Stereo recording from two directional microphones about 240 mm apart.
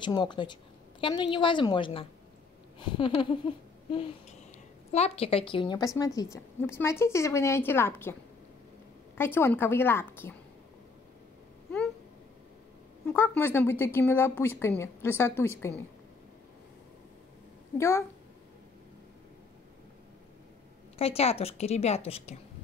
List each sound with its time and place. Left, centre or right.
0.0 s a woman's voice: centre
13.1 s speech: centre
17.7 s speech: centre
21.0 s a woman's voice: left